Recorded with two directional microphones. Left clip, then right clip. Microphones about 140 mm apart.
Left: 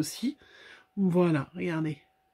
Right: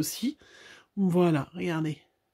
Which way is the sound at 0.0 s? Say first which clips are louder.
Right 1 dB; 35° right (ahead or behind).